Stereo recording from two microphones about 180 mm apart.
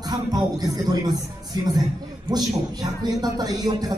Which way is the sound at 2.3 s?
20° right (ahead or behind).